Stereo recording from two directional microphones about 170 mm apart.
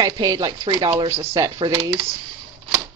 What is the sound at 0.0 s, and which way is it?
Speech, 20° right (ahead or behind).